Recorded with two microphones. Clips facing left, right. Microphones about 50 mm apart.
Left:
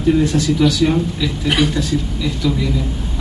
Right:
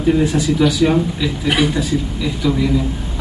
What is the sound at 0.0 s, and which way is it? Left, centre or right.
A man's voice, centre.